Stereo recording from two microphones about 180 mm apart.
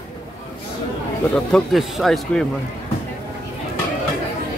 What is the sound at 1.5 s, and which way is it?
Speech, centre (ahead or behind).